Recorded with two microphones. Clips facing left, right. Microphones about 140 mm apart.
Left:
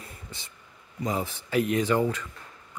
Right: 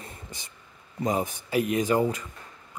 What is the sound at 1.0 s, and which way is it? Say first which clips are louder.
Speech: right 3 dB; 15° right (ahead or behind).